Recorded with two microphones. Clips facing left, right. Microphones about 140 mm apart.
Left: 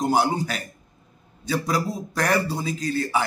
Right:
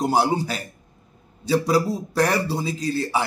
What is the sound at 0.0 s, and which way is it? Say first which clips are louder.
Speech: right 1 dB; 35° right (ahead or behind).